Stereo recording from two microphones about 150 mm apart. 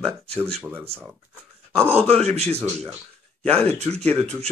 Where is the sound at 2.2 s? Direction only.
45° right (ahead or behind).